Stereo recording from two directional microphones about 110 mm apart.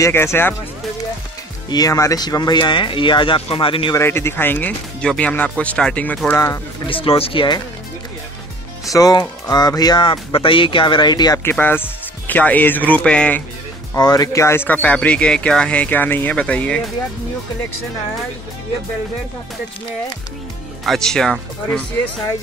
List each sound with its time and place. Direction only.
0.0 s speech: 25° left (ahead or behind)
1.7 s speech: 35° left (ahead or behind); by 3.9 s 50° left (ahead or behind)
3.9 s speech: 20° left (ahead or behind)
6.3 s speech: 30° left (ahead or behind)
6.9 s speech: 55° left (ahead or behind)
8.9 s speech: 35° left (ahead or behind)
11.5 s speech: 20° left (ahead or behind)
13.9 s speech: 35° left (ahead or behind); by 16.9 s 10° left (ahead or behind)
20.8 s speech: 5° left (ahead or behind)